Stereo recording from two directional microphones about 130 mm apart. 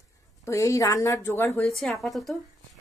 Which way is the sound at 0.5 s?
25° left (ahead or behind).